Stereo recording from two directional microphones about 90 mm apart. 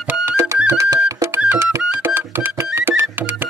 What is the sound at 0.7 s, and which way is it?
Music, 35° right (ahead or behind).